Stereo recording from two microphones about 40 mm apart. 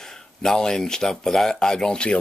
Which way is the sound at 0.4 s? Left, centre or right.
Centre.